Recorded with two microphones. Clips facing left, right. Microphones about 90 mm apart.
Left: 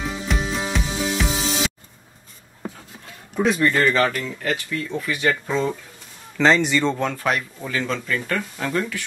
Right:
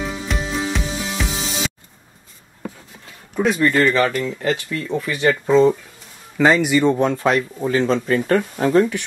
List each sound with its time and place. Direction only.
0.3 s music: centre (ahead or behind)
3.3 s a man's voice: centre (ahead or behind)
4.4 s speech: 35° right (ahead or behind)
6.3 s speech: 5° right (ahead or behind)
7.2 s speech: 30° right (ahead or behind)